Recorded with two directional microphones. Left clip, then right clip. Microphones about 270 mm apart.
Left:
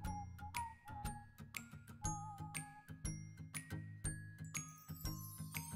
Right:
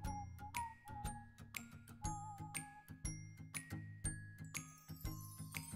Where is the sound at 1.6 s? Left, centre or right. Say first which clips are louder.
Even; centre.